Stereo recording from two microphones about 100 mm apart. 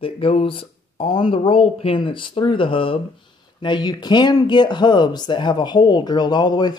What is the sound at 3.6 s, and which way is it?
Speech, 50° left (ahead or behind).